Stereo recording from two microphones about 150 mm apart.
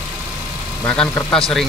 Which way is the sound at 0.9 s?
5° left (ahead or behind).